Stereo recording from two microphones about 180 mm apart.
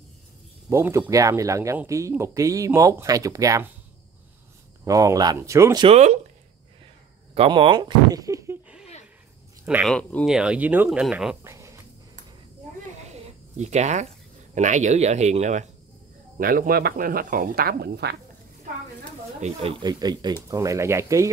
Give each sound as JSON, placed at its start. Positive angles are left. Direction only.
{"t": 0.7, "sound": "speech", "side_deg": -15}
{"t": 4.8, "sound": "speech", "side_deg": -20}
{"t": 5.9, "sound": "speech", "side_deg": -40}
{"t": 7.3, "sound": "speech", "side_deg": -30}
{"t": 9.8, "sound": "speech", "side_deg": 5}
{"t": 11.4, "sound": "a sound", "side_deg": -15}
{"t": 13.1, "sound": "speech", "side_deg": -40}
{"t": 16.3, "sound": "speech", "side_deg": -55}
{"t": 19.8, "sound": "speech", "side_deg": -20}